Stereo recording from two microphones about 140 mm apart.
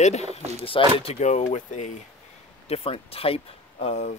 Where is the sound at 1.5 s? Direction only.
60° left (ahead or behind).